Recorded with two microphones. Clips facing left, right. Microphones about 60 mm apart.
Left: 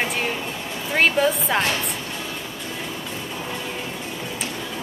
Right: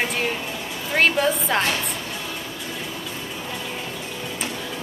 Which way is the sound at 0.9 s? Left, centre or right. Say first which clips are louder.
Left 1 dB; centre.